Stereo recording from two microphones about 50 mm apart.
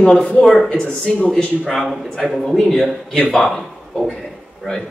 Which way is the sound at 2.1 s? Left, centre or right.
Centre.